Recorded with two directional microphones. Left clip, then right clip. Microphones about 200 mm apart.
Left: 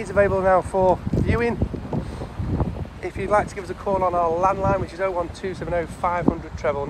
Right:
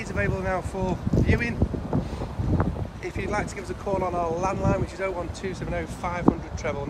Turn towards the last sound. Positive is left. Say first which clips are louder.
# left 2 dB
turn(degrees=-10)  # may be behind; listen again after turning